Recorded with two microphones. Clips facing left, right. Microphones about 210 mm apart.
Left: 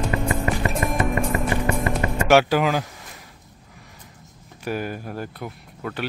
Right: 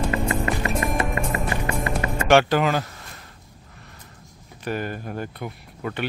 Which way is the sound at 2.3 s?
5° left (ahead or behind).